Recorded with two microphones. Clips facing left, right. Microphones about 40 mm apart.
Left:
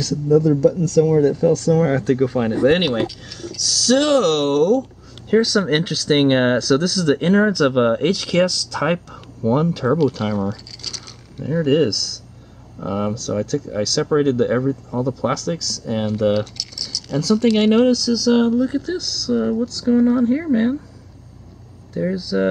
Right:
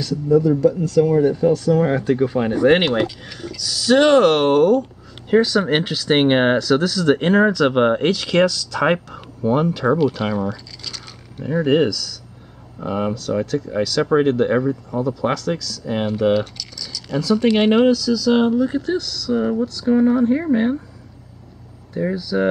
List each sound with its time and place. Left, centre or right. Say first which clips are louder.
0.0 s speech: even; centre
21.9 s speech: even; centre